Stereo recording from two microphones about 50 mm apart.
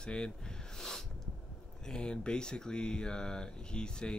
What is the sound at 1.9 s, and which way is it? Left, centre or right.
Speech, centre.